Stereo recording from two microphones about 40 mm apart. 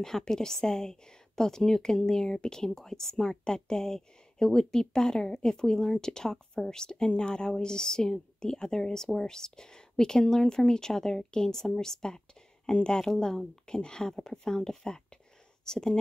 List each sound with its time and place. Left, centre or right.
0.0 s a woman's voice: centre